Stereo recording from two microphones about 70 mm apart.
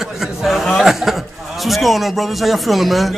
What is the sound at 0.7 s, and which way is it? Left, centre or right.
Chuckle, centre.